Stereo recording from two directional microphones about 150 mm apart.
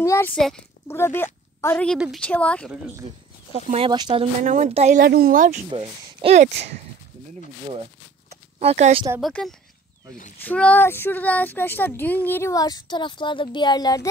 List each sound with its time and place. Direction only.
0.0 s a child's voice: 20° left (ahead or behind)
0.3 s speech: centre (ahead or behind)
0.8 s speech: 15° left (ahead or behind)
2.0 s speech: centre (ahead or behind)
3.8 s speech: 30° right (ahead or behind)
4.4 s speech: 50° right (ahead or behind)
5.0 s speech: 85° right; by 5.6 s 60° right (ahead or behind)
5.7 s speech: 40° right (ahead or behind)
8.3 s a sound: 45° right (ahead or behind)
9.2 s speech: 5° left (ahead or behind); by 14.0 s 25° left (ahead or behind)